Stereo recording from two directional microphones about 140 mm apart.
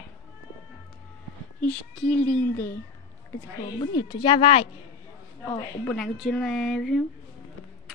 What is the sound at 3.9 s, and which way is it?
Speech, 35° left (ahead or behind).